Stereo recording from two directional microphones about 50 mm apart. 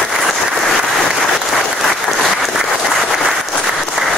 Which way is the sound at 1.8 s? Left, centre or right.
Centre.